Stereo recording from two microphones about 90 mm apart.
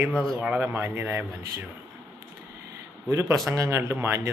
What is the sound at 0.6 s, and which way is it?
Speech, 25° right (ahead or behind).